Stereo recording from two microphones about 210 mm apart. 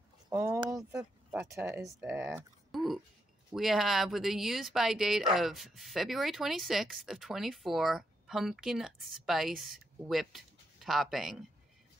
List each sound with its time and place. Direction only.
0.3 s speech: 10° right (ahead or behind)